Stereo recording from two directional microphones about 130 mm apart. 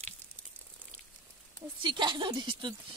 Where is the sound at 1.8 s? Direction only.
35° right (ahead or behind).